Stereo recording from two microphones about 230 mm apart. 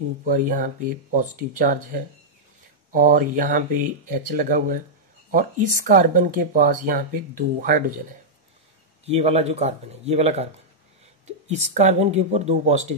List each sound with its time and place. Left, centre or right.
0.2 s speech: right
9.0 s speech: right